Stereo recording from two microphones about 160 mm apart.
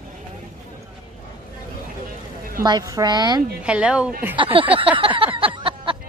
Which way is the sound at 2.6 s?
25° right (ahead or behind).